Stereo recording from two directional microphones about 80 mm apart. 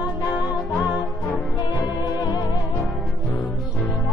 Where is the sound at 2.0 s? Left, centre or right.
Left.